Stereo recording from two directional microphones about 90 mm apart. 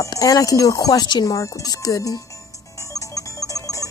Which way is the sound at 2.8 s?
35° left (ahead or behind).